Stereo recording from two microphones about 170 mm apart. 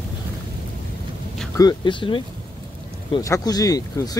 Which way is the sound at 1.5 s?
20° left (ahead or behind).